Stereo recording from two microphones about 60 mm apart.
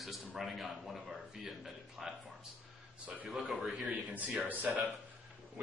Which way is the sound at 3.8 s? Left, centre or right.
Right.